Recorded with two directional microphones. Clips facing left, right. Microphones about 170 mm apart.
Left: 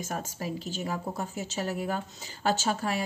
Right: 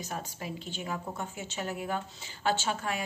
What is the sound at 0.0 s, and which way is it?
Speech, 45° left (ahead or behind).